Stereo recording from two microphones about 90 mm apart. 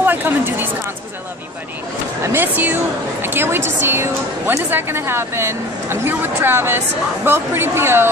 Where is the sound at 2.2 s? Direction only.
25° right (ahead or behind).